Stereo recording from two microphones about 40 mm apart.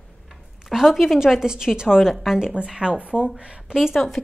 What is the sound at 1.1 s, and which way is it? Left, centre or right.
A woman's voice, centre.